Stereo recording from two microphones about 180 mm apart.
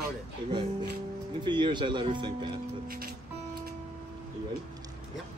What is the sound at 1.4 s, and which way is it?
Speech, 25° right (ahead or behind).